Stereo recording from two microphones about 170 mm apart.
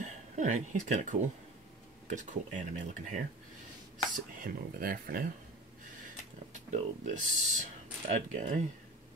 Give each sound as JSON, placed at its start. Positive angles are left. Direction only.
{"t": 0.0, "sound": "speech", "side_deg": -45}
{"t": 6.7, "sound": "speech", "side_deg": -45}